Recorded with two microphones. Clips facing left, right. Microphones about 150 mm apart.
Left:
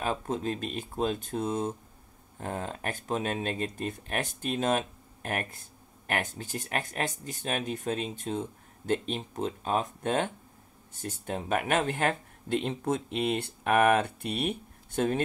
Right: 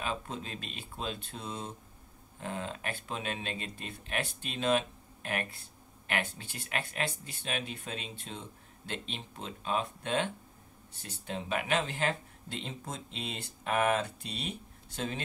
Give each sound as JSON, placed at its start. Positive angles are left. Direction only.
{"t": 0.0, "sound": "speech", "side_deg": 45}